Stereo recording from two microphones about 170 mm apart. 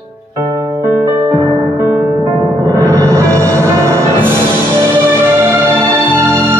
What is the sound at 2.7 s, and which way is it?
Music, 15° right (ahead or behind).